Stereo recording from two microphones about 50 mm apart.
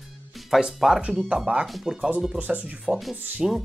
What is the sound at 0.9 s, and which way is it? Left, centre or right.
Speech, right.